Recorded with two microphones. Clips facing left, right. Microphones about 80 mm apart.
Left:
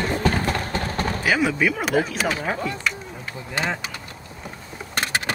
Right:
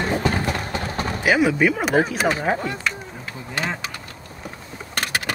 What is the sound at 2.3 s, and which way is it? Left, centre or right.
Speech, right.